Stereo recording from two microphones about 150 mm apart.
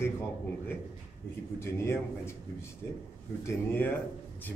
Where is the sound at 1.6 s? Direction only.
20° left (ahead or behind).